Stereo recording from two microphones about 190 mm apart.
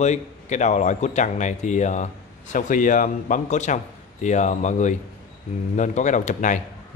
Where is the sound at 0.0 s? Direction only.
40° left (ahead or behind).